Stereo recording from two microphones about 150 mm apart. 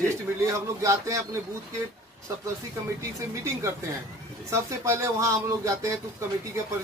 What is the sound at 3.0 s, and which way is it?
Speech, 20° right (ahead or behind).